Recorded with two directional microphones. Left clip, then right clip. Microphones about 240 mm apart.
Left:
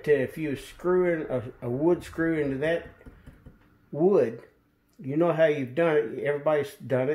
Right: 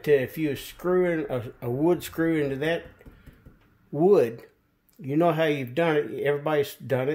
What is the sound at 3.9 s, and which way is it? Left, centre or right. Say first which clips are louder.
Speech: right 2 dB; right.